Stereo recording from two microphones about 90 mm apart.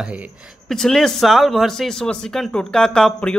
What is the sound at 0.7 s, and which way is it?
Speech, 5° left (ahead or behind).